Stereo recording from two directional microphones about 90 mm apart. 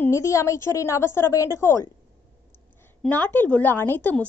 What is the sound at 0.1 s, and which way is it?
A woman's voice, 35° left (ahead or behind).